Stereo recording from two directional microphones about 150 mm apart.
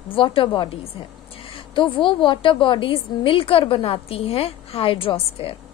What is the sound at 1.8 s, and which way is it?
A woman's voice, 35° left (ahead or behind).